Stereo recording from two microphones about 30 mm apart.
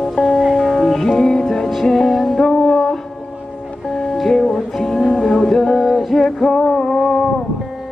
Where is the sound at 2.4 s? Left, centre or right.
Left.